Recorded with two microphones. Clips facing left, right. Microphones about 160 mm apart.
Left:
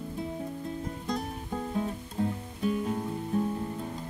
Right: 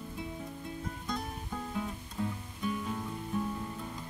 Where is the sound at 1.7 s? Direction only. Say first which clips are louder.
Left 6 dB; 35° left (ahead or behind).